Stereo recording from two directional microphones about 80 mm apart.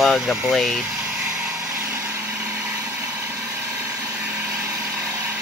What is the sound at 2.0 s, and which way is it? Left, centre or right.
Vehicle, centre.